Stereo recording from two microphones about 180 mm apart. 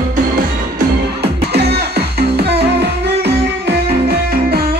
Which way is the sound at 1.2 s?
65° right (ahead or behind).